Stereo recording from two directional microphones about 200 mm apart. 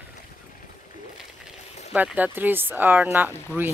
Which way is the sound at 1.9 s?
5° right (ahead or behind).